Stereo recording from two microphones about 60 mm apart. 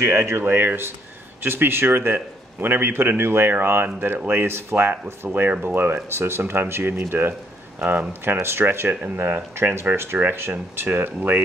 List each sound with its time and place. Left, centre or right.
0.0 s a man's voice: right